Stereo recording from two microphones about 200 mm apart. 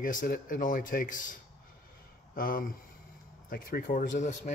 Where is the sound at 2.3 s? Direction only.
45° left (ahead or behind).